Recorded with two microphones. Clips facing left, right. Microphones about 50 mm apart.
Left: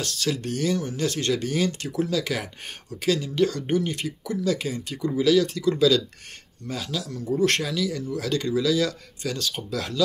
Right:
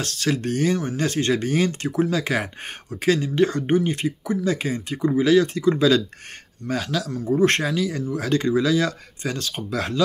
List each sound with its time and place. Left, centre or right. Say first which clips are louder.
0.0 s speech: right 3 dB; right
6.7 s speech: right 6 dB; right
7.1 s speech: right 3 dB; right